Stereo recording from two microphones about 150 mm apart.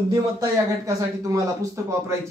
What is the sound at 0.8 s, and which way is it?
Speech, 20° right (ahead or behind).